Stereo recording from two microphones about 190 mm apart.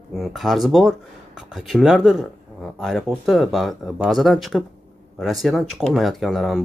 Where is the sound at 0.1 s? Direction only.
Centre (ahead or behind).